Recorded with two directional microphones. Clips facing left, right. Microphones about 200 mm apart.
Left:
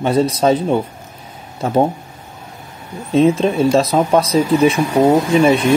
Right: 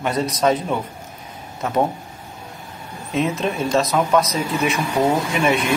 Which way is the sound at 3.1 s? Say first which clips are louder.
Left 9 dB; 30° left (ahead or behind).